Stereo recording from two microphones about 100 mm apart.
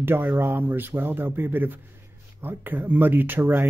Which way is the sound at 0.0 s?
20° right (ahead or behind).